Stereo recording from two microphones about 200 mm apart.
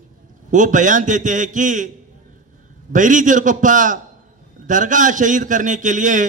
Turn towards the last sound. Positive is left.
turn(degrees=-40)  # may be behind; listen again after turning